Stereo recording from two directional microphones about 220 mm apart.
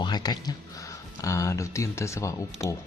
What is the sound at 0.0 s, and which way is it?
Speech, 20° left (ahead or behind).